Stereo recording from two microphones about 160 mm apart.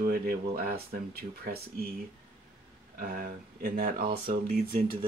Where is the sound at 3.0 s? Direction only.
60° right (ahead or behind).